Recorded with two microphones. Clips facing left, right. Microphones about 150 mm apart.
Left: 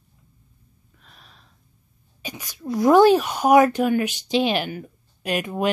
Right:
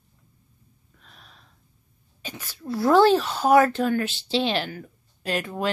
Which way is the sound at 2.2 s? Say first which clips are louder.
Left 3 dB; 15° left (ahead or behind).